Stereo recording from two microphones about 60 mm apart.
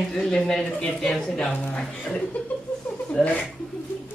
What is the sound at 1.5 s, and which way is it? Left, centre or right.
Speech, left.